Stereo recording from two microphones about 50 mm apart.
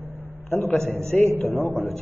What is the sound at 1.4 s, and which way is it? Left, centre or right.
Speech, left.